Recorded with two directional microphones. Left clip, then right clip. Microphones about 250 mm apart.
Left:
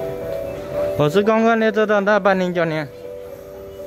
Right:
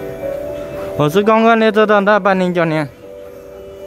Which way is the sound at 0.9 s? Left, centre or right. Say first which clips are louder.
Right 5 dB; centre.